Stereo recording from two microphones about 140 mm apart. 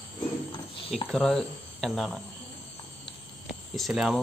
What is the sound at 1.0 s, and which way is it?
Speech, 5° left (ahead or behind).